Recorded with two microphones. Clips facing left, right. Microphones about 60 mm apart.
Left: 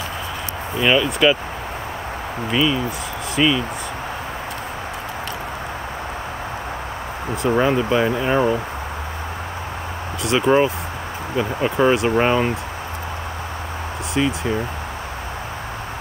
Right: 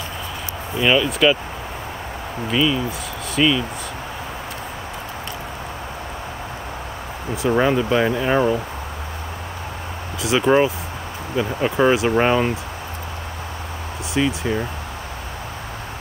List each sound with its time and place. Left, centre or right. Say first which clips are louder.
0.7 s speech: even; centre
2.5 s speech: even; centre
7.4 s speech: even; centre
10.2 s speech: even; centre
14.1 s speech: even; centre